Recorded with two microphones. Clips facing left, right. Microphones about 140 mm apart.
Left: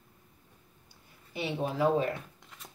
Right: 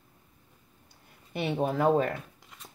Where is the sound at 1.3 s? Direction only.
60° right (ahead or behind).